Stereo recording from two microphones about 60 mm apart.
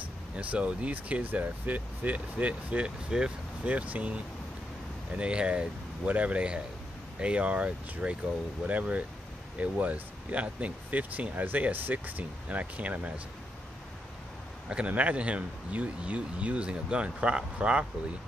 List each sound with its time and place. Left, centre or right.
0.4 s speech: right
14.7 s speech: right